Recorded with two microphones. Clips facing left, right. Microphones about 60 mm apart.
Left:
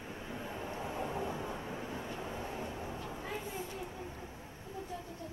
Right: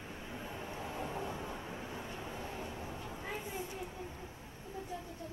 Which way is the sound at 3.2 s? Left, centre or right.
Centre.